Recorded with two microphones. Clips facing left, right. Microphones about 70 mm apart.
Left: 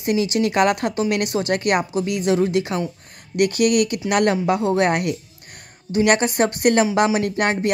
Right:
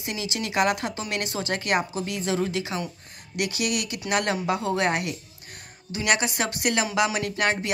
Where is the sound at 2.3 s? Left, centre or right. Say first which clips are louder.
Left 6 dB; left.